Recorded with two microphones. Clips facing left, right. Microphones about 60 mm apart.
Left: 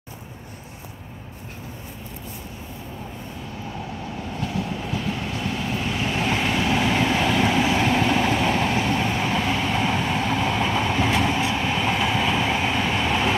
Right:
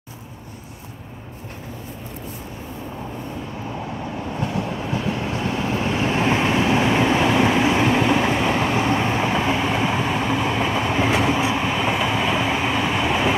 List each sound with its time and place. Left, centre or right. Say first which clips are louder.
4.8 s vehicle: right 3 dB; right; by 13.4 s centre